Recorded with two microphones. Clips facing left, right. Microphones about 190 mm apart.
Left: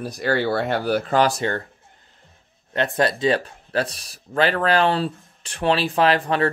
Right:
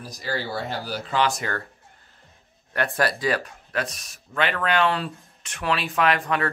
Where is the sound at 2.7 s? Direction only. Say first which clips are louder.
Left 3 dB; 20° left (ahead or behind).